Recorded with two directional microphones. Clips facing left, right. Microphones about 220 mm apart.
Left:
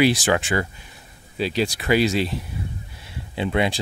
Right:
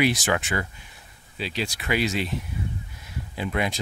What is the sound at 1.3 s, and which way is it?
Speech, 40° left (ahead or behind).